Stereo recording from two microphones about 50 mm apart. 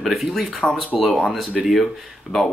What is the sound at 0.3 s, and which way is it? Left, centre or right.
Speech, centre.